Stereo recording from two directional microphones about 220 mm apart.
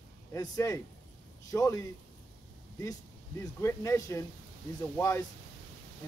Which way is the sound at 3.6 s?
15° left (ahead or behind).